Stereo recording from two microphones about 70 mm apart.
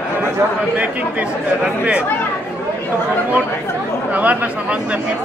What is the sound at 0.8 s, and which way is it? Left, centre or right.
Speech, centre.